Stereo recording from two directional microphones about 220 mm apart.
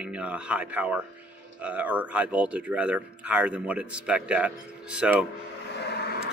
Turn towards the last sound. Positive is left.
turn(degrees=50)  # may be behind; listen again after turning